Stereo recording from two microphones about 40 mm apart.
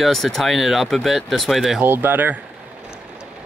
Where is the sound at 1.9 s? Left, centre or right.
Right.